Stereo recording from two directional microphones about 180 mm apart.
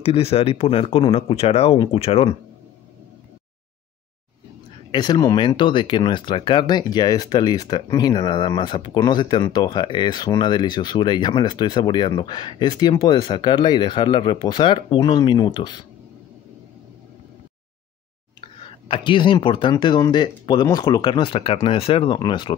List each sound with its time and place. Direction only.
0.0 s speech: 35° left (ahead or behind)
4.9 s speech: 25° left (ahead or behind)
18.4 s speech: 30° left (ahead or behind)